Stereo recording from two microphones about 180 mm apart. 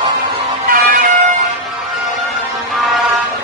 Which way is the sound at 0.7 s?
50° right (ahead or behind).